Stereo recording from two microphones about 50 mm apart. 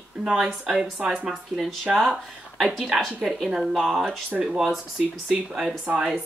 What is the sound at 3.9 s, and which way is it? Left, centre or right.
Speech, centre.